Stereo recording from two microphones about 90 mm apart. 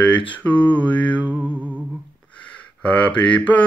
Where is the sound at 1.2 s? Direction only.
20° right (ahead or behind).